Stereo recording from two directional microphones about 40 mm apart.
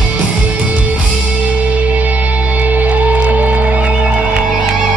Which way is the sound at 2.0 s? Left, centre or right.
Right.